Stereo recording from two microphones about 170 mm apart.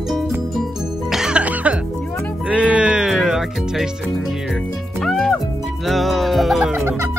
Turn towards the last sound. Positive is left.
turn(degrees=-10)  # may be behind; listen again after turning